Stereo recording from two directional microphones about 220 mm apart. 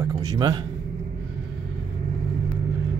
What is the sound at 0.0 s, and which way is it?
Speech, 20° right (ahead or behind).